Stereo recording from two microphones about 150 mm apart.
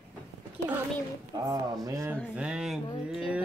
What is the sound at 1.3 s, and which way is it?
Speech, 25° right (ahead or behind).